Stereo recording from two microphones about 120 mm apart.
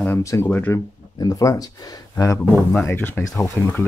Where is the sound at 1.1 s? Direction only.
30° left (ahead or behind).